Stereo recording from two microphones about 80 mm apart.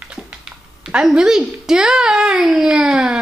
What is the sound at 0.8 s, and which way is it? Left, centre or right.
Speech, centre.